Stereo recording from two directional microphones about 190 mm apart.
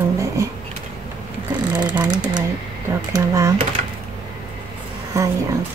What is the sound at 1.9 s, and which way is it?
Mechanisms, 20° right (ahead or behind).